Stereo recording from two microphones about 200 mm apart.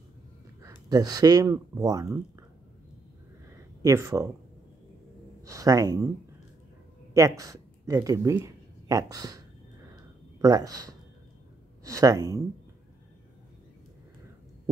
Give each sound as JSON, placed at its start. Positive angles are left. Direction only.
{"t": 0.6, "sound": "speech", "side_deg": -15}
{"t": 3.8, "sound": "speech", "side_deg": -15}
{"t": 5.4, "sound": "speech", "side_deg": -15}
{"t": 7.2, "sound": "speech", "side_deg": -15}
{"t": 10.4, "sound": "speech", "side_deg": -20}